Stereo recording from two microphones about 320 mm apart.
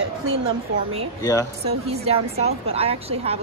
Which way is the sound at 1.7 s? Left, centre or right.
Centre.